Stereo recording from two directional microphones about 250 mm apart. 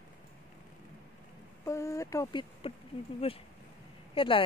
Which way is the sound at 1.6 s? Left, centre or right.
Centre.